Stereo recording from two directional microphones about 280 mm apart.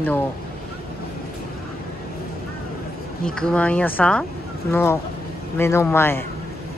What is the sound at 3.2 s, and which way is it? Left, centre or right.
Speech, centre.